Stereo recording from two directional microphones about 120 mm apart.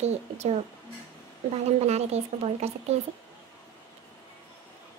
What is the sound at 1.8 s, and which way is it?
Speech, 65° right (ahead or behind).